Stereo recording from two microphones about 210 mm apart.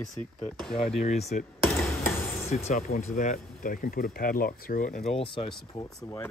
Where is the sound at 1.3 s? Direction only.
40° left (ahead or behind).